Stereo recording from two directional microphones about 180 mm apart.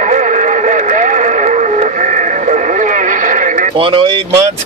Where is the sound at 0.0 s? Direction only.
45° right (ahead or behind).